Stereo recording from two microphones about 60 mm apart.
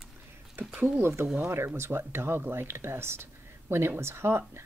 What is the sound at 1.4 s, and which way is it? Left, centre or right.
Speech, right.